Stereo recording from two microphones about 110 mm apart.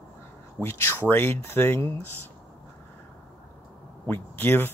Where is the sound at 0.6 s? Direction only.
20° left (ahead or behind).